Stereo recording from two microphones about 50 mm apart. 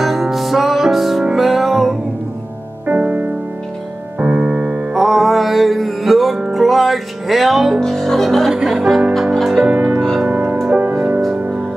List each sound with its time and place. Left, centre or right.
0.0 s music: centre
2.9 s music: right
4.9 s music: centre
7.8 s music: centre
9.7 s music: right